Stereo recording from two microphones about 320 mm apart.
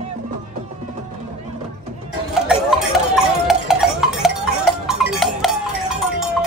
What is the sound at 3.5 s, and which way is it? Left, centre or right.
Cowbell, centre.